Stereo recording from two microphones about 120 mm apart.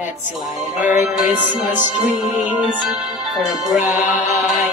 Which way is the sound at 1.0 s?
5° right (ahead or behind).